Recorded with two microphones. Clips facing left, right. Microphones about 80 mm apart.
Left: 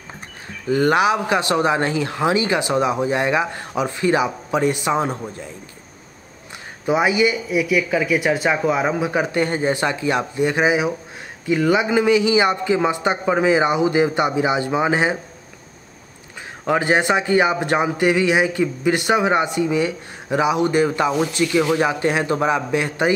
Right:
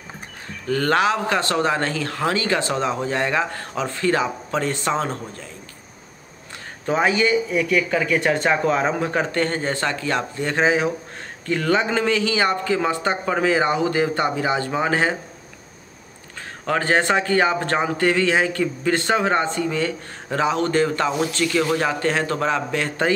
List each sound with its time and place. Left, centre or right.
0.7 s a man's voice: centre
6.9 s a man's voice: centre
16.6 s a man's voice: centre